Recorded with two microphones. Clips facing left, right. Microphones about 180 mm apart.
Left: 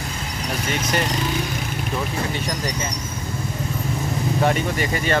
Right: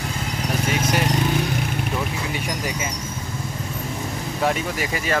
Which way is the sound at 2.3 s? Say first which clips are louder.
Left 1 dB; 10° right (ahead or behind).